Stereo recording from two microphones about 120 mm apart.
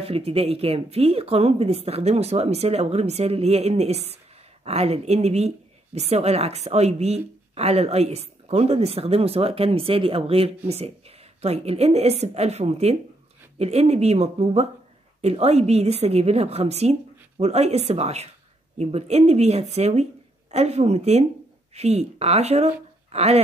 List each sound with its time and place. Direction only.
0.0 s a woman's voice: 55° right (ahead or behind)